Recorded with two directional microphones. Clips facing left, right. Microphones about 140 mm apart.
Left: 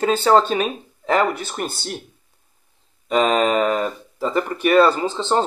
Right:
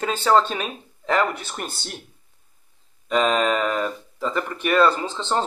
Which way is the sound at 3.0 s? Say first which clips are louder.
Left 3 dB; 5° left (ahead or behind).